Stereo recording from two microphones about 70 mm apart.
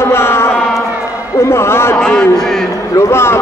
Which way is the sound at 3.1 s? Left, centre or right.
Left.